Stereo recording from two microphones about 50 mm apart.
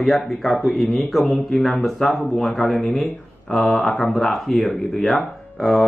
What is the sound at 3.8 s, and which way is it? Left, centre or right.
Speech, centre.